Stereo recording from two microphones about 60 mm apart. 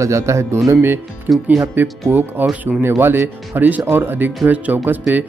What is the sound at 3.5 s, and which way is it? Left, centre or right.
Speech, right.